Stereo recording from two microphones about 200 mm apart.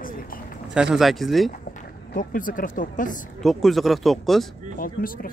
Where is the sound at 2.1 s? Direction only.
45° left (ahead or behind).